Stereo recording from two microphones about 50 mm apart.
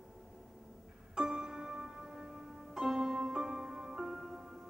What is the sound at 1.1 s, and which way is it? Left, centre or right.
Music, centre.